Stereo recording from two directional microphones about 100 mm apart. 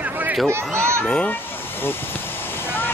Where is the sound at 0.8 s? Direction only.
25° right (ahead or behind).